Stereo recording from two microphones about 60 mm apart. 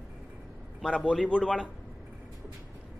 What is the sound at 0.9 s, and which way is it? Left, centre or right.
Speech, centre.